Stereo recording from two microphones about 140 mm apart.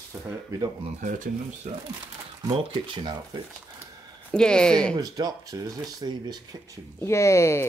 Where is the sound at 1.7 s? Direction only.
50° right (ahead or behind).